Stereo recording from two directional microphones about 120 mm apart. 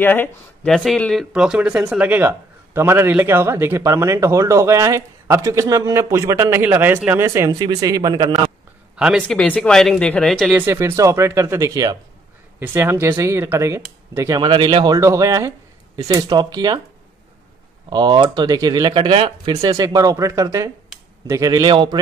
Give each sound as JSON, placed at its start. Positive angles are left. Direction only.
{"t": 0.0, "sound": "speech", "side_deg": 15}
{"t": 0.7, "sound": "speech", "side_deg": 5}
{"t": 1.3, "sound": "a man's voice", "side_deg": -5}
{"t": 8.9, "sound": "speech", "side_deg": -5}
{"t": 9.3, "sound": "speech", "side_deg": 5}
{"t": 10.5, "sound": "a man's voice", "side_deg": -20}
{"t": 12.5, "sound": "a man's voice", "side_deg": -20}
{"t": 14.4, "sound": "speech", "side_deg": -45}
{"t": 15.0, "sound": "a man's voice", "side_deg": -25}
{"t": 17.8, "sound": "speech", "side_deg": -40}
{"t": 18.9, "sound": "speech", "side_deg": -50}
{"t": 19.6, "sound": "a man's voice", "side_deg": -30}
{"t": 21.6, "sound": "speech", "side_deg": -45}